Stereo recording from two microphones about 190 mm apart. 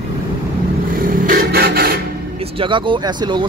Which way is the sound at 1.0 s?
50° right (ahead or behind).